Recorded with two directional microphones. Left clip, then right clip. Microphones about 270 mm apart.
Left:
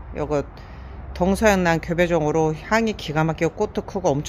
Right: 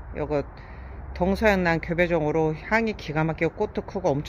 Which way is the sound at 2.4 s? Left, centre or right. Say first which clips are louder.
Left 3 dB; centre.